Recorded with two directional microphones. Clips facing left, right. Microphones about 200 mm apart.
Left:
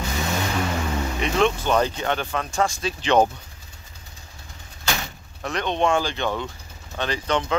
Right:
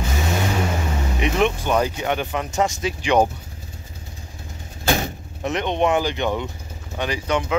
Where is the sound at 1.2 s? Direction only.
15° right (ahead or behind).